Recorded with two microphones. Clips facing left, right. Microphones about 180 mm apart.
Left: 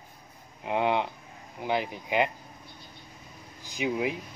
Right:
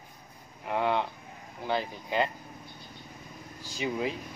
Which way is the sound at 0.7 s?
20° left (ahead or behind).